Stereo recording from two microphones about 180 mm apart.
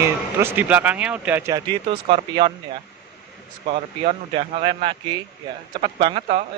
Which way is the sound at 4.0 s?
30° right (ahead or behind).